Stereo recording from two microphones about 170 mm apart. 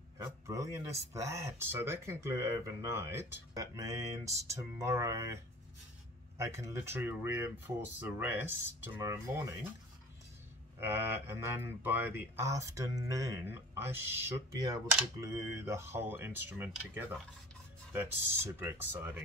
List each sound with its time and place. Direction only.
0.2 s speech: 20° right (ahead or behind)
10.8 s speech: 15° right (ahead or behind)